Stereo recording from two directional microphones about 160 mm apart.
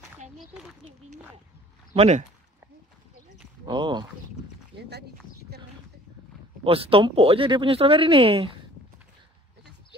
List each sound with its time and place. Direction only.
2.0 s speech: 40° right (ahead or behind)
3.6 s speech: 30° right (ahead or behind)
4.7 s speech: 90° right
6.6 s speech: 35° right (ahead or behind)